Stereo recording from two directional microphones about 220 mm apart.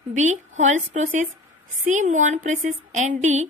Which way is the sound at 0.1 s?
35° right (ahead or behind).